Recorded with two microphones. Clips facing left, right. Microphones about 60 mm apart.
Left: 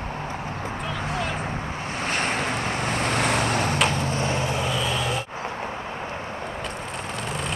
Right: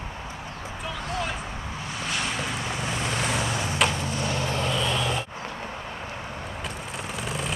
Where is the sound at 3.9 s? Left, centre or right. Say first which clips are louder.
Left 3 dB; left.